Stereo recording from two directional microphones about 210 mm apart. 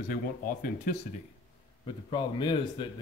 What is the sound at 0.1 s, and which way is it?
Speech, 45° left (ahead or behind).